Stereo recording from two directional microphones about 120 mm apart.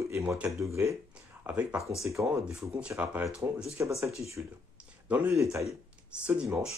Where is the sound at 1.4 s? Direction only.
10° right (ahead or behind).